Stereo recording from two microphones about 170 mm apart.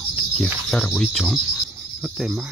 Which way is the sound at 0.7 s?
5° left (ahead or behind).